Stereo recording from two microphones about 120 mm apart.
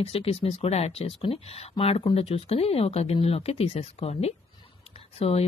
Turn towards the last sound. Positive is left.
turn(degrees=60)  # may be behind; listen again after turning